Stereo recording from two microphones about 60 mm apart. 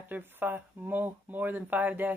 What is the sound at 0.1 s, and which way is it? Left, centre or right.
Speech, right.